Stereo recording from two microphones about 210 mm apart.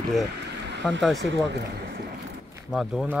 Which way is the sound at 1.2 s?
60° right (ahead or behind).